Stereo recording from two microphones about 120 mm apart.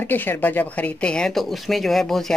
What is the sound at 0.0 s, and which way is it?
Speech, 15° left (ahead or behind).